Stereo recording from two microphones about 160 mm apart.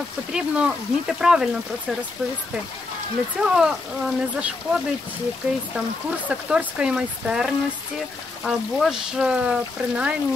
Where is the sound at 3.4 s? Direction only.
5° right (ahead or behind).